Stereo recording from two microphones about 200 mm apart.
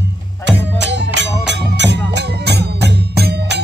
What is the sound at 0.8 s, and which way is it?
Music, 60° right (ahead or behind).